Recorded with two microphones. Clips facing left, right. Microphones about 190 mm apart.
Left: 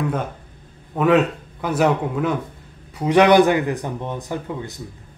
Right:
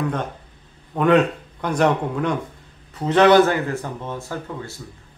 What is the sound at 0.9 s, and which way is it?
Speech, 5° left (ahead or behind).